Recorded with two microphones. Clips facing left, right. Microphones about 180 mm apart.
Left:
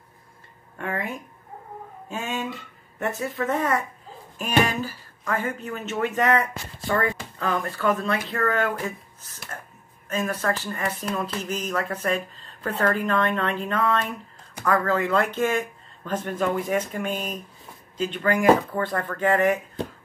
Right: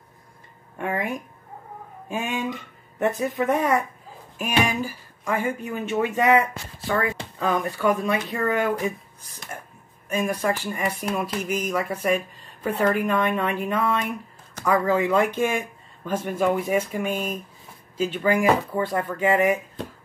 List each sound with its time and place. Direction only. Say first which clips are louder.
0.7 s speech: right 3 dB; 15° right (ahead or behind)